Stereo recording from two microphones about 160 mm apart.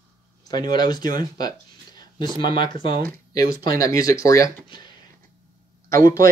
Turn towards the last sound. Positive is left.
turn(degrees=20)  # may be behind; listen again after turning